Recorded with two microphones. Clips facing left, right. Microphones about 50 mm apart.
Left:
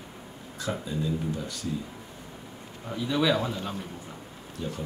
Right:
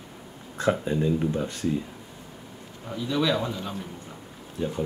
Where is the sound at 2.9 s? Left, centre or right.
Centre.